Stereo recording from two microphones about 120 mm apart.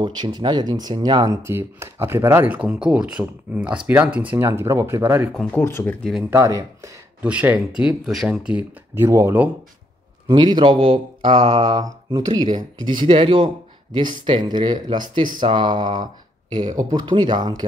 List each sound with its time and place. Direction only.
0.0 s speech: 40° right (ahead or behind); by 5.3 s 25° right (ahead or behind)
5.3 s speech: 10° left (ahead or behind)
6.3 s speech: 25° right (ahead or behind)
7.2 s speech: 10° right (ahead or behind)
8.9 s speech: 20° right (ahead or behind)
10.2 s speech: 35° right (ahead or behind)